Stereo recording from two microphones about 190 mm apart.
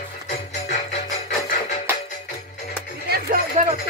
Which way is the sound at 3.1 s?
50° right (ahead or behind).